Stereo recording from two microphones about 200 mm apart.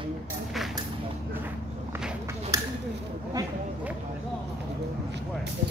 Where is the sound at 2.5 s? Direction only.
15° right (ahead or behind).